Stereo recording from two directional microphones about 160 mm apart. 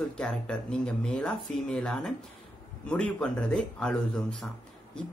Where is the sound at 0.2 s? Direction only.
5° left (ahead or behind).